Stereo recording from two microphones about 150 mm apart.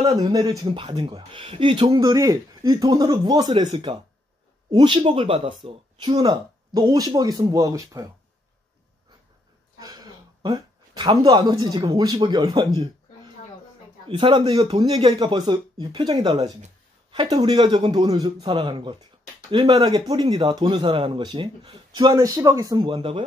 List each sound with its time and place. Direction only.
0.0 s speech: 25° right (ahead or behind)
9.8 s speech: 25° right (ahead or behind)
14.0 s speech: 35° right (ahead or behind)
22.9 s speech: 35° right (ahead or behind)